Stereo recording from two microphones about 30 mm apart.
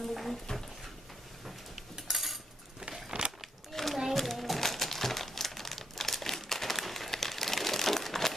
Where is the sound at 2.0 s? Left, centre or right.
Centre.